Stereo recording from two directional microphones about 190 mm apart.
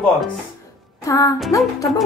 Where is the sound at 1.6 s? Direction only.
Centre (ahead or behind).